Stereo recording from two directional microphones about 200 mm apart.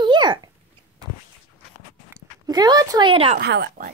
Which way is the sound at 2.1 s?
20° right (ahead or behind).